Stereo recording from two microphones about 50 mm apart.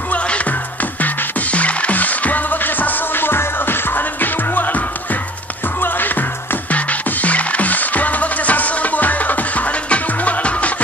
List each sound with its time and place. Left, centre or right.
0.1 s music: left
6.7 s music: left